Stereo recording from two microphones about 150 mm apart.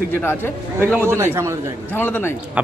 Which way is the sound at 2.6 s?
10° right (ahead or behind).